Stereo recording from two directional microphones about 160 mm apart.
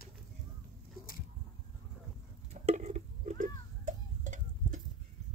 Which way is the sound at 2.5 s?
45° right (ahead or behind).